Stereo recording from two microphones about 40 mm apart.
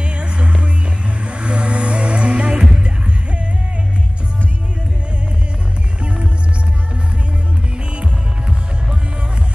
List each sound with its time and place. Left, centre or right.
0.0 s music: right
7.9 s music: right